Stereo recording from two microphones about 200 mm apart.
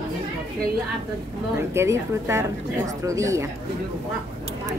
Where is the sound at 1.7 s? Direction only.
15° right (ahead or behind).